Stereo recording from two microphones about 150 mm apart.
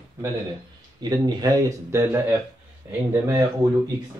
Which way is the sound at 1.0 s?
25° right (ahead or behind).